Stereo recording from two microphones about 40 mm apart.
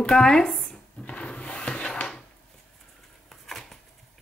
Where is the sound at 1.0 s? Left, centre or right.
Left.